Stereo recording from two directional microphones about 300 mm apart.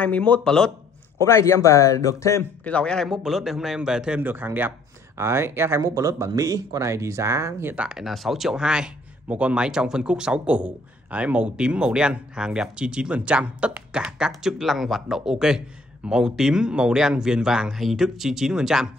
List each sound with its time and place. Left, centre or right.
0.0 s a man's voice: centre